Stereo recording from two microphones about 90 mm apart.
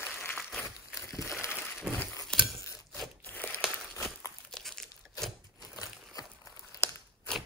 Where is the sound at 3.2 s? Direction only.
20° left (ahead or behind).